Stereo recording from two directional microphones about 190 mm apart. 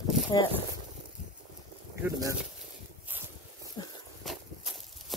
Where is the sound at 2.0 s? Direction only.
20° right (ahead or behind).